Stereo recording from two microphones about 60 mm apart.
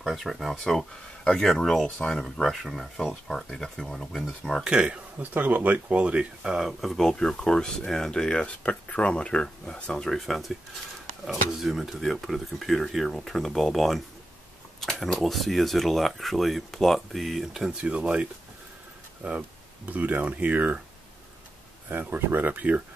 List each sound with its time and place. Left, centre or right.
0.0 s speech: centre
2.4 s speech: centre
4.6 s speech: centre
5.3 s speech: right; by 6.7 s centre
6.8 s speech: centre
10.1 s speech: centre
17.8 s speech: right
19.2 s speech: right
21.8 s speech: right